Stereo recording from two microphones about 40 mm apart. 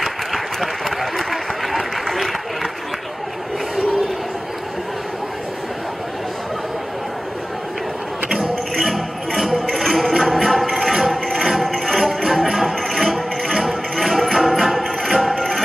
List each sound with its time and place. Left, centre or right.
0.0 s applause: centre
8.7 s music: centre